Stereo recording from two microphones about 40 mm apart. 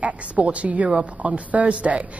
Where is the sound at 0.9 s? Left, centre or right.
Right.